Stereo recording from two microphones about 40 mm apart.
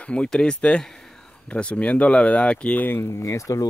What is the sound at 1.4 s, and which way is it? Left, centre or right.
Speech, left.